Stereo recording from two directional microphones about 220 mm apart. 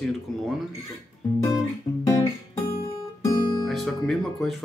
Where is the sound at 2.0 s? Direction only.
15° left (ahead or behind).